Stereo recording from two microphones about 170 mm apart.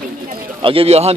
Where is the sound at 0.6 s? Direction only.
30° right (ahead or behind).